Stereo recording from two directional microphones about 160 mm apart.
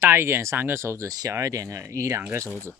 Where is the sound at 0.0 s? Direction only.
15° right (ahead or behind).